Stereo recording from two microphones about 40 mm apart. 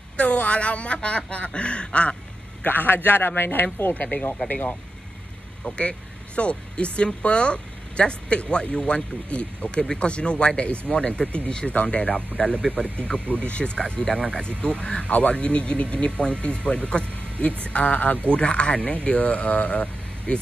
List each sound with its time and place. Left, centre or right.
0.2 s speech: left
2.6 s speech: left
3.9 s speech: left
5.8 s speech: left